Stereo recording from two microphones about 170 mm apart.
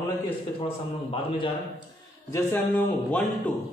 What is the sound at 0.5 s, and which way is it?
Speech, 30° left (ahead or behind).